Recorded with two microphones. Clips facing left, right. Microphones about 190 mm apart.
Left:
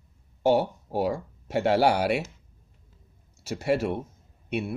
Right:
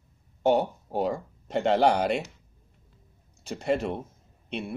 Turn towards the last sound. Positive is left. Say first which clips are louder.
# left 4 dB
turn(degrees=10)  # may be behind; listen again after turning